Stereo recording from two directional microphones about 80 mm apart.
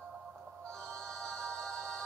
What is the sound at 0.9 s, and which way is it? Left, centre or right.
Music, centre.